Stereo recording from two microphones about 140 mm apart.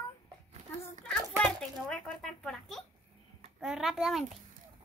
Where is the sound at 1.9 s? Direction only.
5° left (ahead or behind).